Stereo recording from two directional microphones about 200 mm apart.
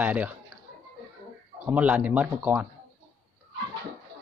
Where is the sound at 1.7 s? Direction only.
5° right (ahead or behind).